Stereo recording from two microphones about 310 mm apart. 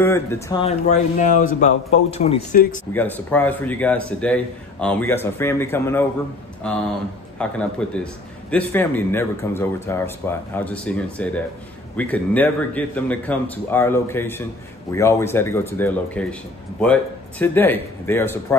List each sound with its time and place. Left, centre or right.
0.0 s speech: centre; by 2.8 s left
2.9 s a man's voice: centre